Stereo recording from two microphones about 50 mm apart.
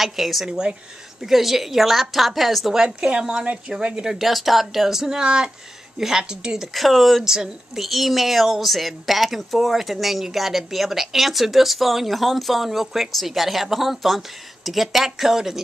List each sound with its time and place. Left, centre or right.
0.0 s a woman's voice: centre
0.5 s a woman's voice: centre
1.2 s a woman's voice: centre
6.7 s a woman's voice: centre